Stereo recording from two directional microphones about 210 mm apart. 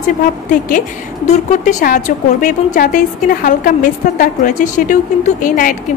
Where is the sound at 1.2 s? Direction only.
40° left (ahead or behind).